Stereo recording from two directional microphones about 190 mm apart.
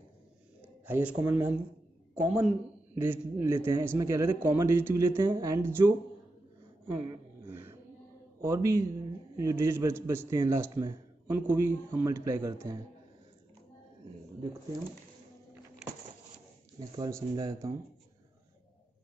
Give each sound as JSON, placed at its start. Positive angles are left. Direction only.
{"t": 0.6, "sound": "a man's voice", "side_deg": -10}
{"t": 7.4, "sound": "a sound", "side_deg": -10}
{"t": 8.4, "sound": "a man's voice", "side_deg": -15}
{"t": 16.9, "sound": "speech", "side_deg": -20}